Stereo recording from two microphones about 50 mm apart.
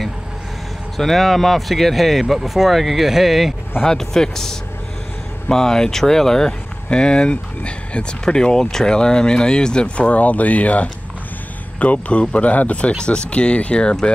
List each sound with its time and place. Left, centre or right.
0.9 s speech: centre
3.8 s speech: centre